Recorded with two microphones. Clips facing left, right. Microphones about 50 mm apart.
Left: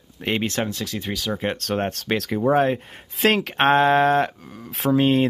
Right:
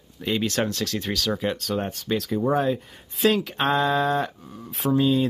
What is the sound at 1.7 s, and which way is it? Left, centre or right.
Speech, left.